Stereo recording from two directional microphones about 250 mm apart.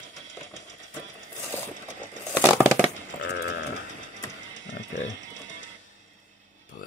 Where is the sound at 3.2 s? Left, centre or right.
Left.